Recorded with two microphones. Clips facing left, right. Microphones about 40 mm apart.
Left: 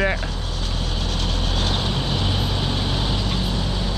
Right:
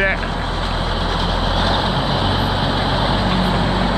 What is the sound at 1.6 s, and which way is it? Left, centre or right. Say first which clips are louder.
Vehicle: right 6 dB; centre.